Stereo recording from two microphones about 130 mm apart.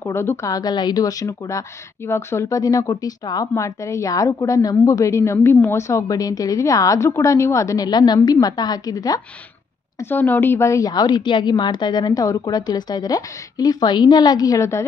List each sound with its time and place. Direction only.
0.0 s speech: 20° left (ahead or behind)
9.9 s a woman's voice: 15° left (ahead or behind)